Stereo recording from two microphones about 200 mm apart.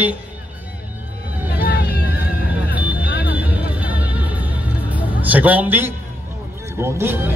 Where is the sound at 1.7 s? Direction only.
55° left (ahead or behind).